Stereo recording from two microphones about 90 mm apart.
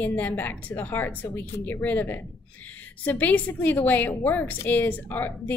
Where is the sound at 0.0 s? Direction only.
15° left (ahead or behind).